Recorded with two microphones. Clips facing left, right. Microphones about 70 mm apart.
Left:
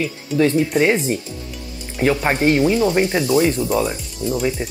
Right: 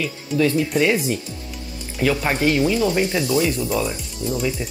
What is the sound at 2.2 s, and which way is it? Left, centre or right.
Speech, left.